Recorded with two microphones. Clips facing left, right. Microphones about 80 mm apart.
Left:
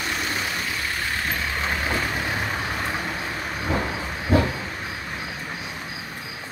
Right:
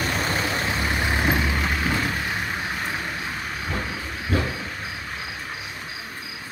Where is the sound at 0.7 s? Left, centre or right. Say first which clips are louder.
Right 3 dB; right.